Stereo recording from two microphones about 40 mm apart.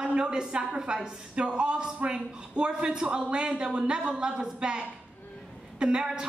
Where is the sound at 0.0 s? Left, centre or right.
Right.